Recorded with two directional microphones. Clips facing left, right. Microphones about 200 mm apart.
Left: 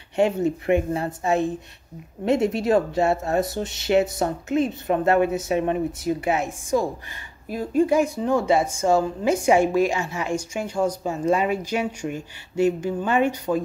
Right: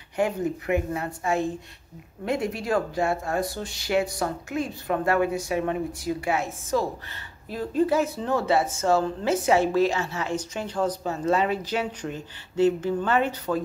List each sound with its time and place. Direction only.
0.1 s speech: 25° left (ahead or behind)